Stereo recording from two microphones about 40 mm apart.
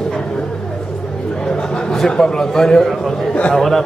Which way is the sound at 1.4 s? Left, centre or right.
Centre.